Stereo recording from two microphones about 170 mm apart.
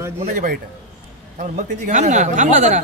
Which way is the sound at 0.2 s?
50° right (ahead or behind).